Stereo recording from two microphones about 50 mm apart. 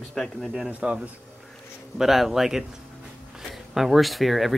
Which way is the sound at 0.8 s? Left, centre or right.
Right.